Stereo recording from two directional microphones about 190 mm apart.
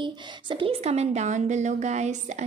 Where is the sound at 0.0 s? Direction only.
25° right (ahead or behind).